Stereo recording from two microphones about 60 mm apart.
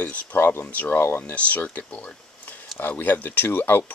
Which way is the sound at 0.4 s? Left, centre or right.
Left.